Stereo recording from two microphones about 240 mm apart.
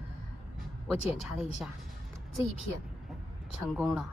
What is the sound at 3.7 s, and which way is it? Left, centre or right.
Speech, centre.